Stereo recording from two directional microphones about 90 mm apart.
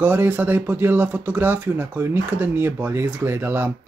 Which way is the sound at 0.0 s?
20° right (ahead or behind).